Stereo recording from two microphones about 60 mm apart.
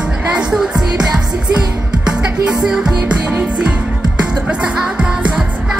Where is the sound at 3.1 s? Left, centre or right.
Right.